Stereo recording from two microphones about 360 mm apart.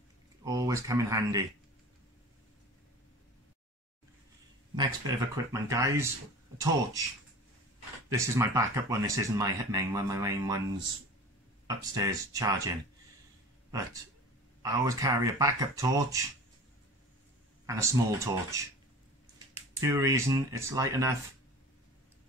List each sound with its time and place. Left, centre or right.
0.5 s speech: centre
4.7 s speech: centre
8.1 s speech: centre
11.6 s speech: centre
14.6 s speech: centre
17.6 s speech: centre